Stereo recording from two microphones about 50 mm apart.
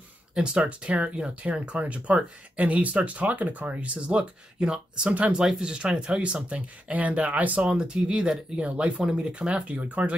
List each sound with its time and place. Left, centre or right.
0.7 s speech: right
7.6 s speech: centre